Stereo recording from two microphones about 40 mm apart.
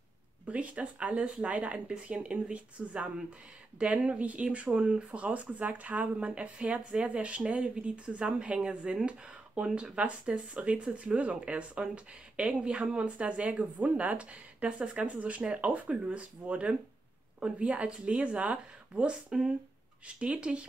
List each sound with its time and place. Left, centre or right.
0.5 s speech: right